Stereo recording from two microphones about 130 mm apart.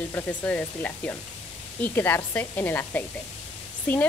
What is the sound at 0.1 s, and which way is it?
Speech, 15° left (ahead or behind).